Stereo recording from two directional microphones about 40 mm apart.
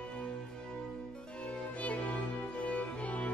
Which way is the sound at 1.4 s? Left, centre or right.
Left.